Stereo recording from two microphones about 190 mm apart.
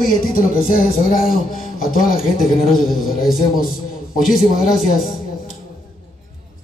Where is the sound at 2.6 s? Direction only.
Centre (ahead or behind).